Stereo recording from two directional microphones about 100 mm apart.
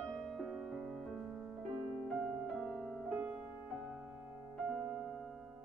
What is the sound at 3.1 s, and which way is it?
Music, 20° right (ahead or behind).